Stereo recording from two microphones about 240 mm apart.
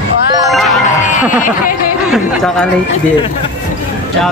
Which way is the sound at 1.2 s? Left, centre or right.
Left.